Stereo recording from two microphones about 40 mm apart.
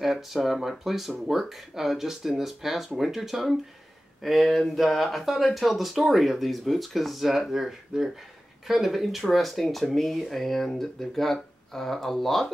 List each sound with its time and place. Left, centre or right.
0.0 s speech: centre
7.9 s speech: centre
8.6 s speech: centre